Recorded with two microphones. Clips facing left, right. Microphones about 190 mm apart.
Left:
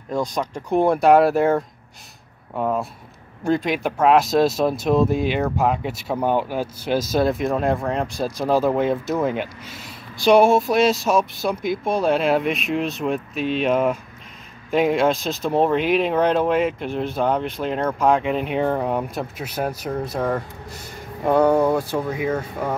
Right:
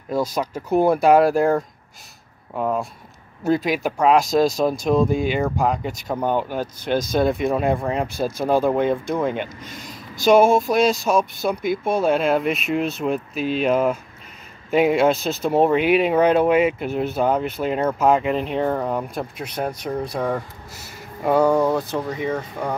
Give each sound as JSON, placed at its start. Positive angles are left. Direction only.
{"t": 0.1, "sound": "speech", "side_deg": -5}